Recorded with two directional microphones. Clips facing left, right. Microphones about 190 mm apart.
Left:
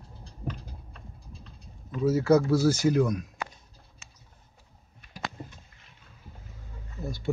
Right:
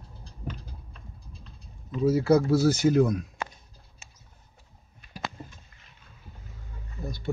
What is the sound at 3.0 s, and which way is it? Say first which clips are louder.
Speech: right 2 dB; 35° right (ahead or behind).